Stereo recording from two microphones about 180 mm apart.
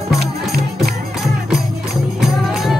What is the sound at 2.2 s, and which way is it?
Music, centre (ahead or behind).